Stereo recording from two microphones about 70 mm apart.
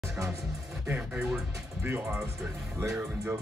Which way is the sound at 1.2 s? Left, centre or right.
Centre.